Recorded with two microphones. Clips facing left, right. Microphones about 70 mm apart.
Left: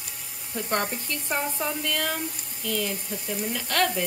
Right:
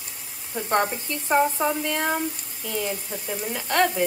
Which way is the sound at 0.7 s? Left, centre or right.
Right.